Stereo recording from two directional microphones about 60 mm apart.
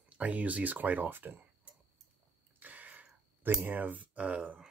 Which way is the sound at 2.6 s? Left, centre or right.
Right.